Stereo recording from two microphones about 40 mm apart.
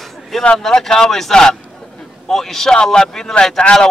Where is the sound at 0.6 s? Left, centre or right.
Centre.